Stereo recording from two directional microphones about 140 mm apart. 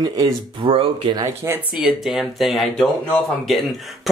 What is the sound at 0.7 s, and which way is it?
Speech, 40° right (ahead or behind).